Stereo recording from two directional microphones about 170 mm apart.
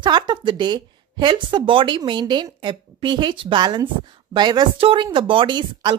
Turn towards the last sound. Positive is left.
turn(degrees=-25)  # may be behind; listen again after turning